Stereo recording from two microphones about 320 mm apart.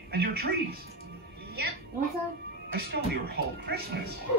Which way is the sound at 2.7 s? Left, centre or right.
Right.